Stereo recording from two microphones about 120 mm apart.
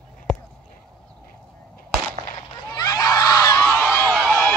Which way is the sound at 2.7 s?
35° left (ahead or behind).